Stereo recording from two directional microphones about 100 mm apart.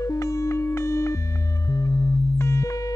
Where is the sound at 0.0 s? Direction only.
30° left (ahead or behind).